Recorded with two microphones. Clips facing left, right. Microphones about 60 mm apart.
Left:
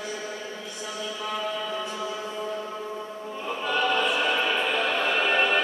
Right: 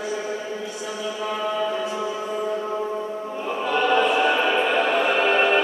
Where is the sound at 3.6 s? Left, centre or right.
Centre.